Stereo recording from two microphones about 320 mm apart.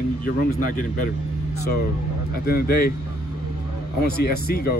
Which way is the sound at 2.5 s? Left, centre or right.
Left.